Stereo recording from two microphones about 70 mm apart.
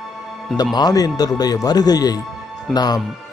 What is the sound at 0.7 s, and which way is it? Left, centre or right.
Speech, left.